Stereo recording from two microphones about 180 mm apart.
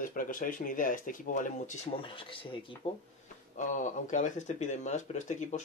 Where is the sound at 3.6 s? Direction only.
45° left (ahead or behind).